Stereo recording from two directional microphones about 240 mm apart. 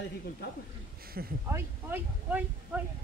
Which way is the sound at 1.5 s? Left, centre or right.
Centre.